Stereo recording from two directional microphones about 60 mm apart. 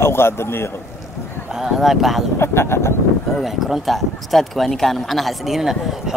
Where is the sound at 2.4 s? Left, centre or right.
Left.